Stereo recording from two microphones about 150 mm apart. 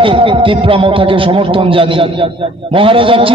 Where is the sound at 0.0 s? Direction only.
35° right (ahead or behind).